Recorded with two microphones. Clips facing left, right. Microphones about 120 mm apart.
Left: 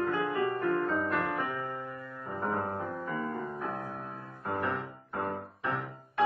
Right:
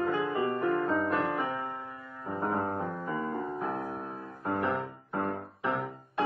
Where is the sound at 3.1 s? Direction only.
30° right (ahead or behind).